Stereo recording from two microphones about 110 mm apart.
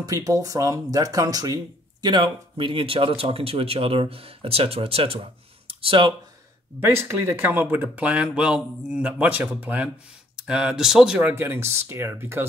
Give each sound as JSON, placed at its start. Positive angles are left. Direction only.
{"t": 0.0, "sound": "speech", "side_deg": -30}
{"t": 6.8, "sound": "speech", "side_deg": -20}
{"t": 11.1, "sound": "speech", "side_deg": -20}